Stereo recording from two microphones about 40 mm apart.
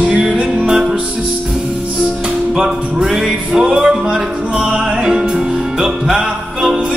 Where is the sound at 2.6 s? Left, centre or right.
Centre.